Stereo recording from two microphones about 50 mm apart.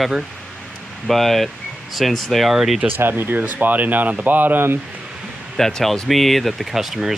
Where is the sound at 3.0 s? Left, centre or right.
Right.